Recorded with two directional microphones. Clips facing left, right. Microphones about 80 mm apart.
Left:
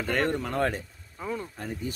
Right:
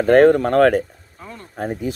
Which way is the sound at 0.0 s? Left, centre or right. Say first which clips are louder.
Right 15 dB; right.